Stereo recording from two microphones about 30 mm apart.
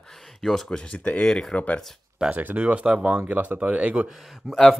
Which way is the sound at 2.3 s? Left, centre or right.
Right.